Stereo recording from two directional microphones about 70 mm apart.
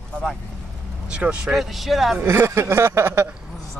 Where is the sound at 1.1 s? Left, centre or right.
Centre.